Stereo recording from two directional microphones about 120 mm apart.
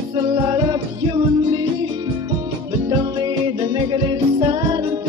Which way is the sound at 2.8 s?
35° right (ahead or behind).